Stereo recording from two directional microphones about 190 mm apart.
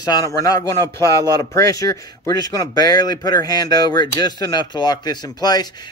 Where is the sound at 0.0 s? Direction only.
20° left (ahead or behind).